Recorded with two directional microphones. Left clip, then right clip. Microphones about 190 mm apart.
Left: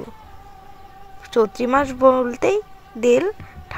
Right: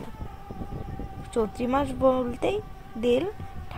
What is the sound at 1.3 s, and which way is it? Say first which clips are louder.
Speech: left 9 dB; 25° left (ahead or behind).